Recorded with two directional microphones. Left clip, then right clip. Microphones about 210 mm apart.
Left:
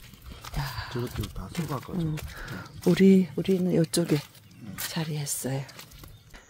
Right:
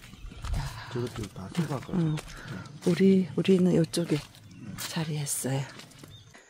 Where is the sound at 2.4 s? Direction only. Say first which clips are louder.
Left 3 dB; 20° left (ahead or behind).